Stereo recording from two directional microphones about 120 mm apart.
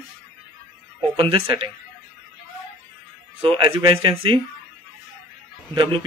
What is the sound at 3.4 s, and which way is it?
Speech, 45° right (ahead or behind).